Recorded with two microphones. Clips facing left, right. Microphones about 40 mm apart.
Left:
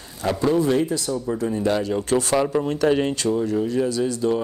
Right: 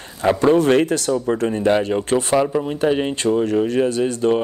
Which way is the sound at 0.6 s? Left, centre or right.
Right.